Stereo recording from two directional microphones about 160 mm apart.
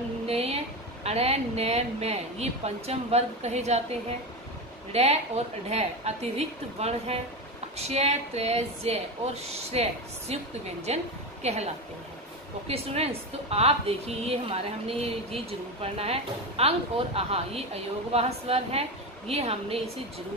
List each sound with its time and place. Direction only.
0.3 s a sound: 40° right (ahead or behind)
1.0 s a woman's voice: 40° right (ahead or behind)
4.9 s a woman's voice: 40° right (ahead or behind)